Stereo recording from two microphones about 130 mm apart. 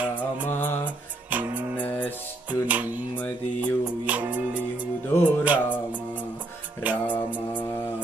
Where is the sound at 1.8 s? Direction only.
15° left (ahead or behind).